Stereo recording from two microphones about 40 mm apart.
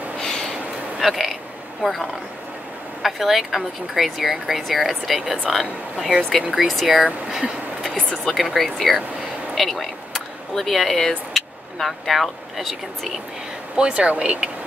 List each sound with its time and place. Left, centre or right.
0.2 s snort: centre
0.9 s a sound: centre
3.0 s speech: centre
6.5 s speech: centre
7.1 s speech: centre
8.1 s speech: centre
13.8 s speech: right